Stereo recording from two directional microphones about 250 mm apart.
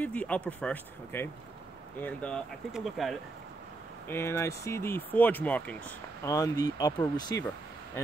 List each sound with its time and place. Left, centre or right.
0.0 s speech: centre
4.1 s speech: centre